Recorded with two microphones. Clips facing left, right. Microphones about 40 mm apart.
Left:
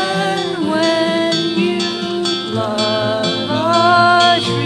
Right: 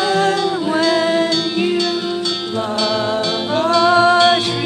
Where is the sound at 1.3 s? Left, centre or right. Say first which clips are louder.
Left 1 dB; left.